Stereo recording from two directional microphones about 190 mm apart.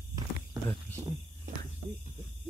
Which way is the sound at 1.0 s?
20° right (ahead or behind).